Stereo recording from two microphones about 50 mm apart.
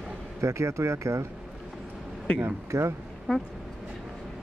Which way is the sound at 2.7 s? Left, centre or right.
Right.